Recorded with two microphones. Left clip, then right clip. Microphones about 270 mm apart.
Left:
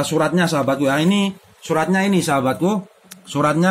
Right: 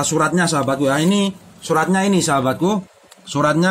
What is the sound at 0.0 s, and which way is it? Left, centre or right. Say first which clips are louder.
A man's voice: right 1 dB; centre.